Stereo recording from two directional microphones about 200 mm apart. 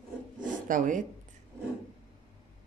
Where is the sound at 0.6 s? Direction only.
40° right (ahead or behind).